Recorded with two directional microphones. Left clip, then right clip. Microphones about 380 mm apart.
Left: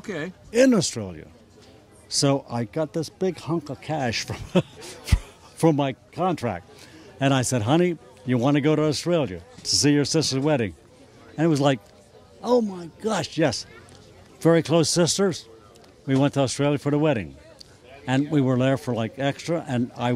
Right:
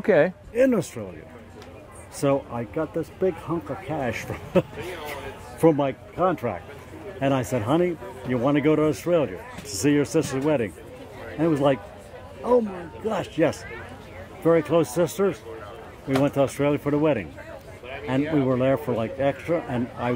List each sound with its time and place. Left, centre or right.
0.0 s speech: centre
0.5 s speech: left
2.1 s speech: left